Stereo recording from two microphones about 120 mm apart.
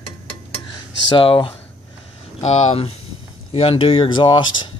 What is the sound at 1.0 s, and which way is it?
Speech, 50° left (ahead or behind).